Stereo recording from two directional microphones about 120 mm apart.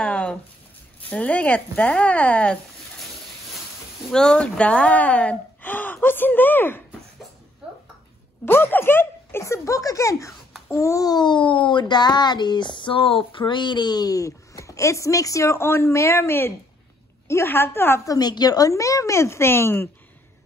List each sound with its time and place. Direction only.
0.0 s a sound: 10° left (ahead or behind)
1.1 s speech: 10° left (ahead or behind)
4.1 s speech: 5° left (ahead or behind)
8.5 s a child's voice: 15° left (ahead or behind)